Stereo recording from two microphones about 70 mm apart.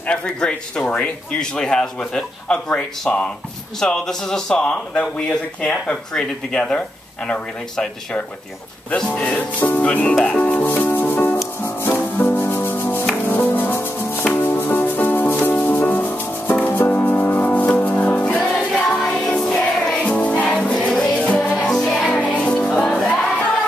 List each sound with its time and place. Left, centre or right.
0.0 s speech: centre
9.6 s music: left
19.0 s music: centre